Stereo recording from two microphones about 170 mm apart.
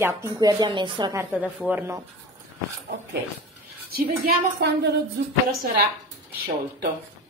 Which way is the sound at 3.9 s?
70° right (ahead or behind).